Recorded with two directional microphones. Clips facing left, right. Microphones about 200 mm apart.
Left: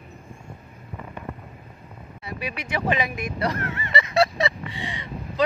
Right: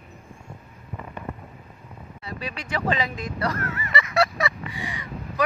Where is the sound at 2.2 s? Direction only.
20° left (ahead or behind).